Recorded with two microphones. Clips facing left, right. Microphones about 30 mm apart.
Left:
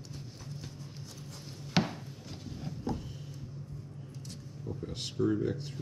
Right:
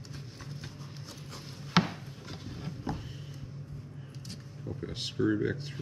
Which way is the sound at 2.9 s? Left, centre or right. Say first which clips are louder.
Left 1 dB; right.